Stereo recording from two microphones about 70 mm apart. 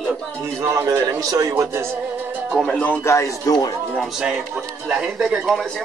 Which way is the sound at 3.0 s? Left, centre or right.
Left.